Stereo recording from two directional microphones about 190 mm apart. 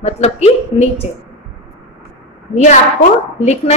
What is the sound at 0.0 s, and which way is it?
Speech, 35° left (ahead or behind).